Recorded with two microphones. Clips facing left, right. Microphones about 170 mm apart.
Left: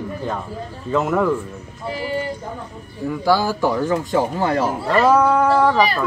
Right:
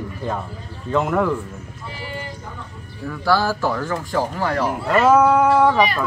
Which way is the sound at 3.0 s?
15° left (ahead or behind).